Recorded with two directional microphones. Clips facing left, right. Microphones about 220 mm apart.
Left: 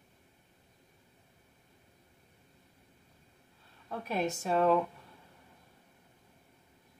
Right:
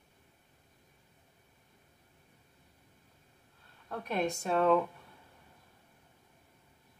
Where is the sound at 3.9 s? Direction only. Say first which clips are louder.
Even; 5° left (ahead or behind).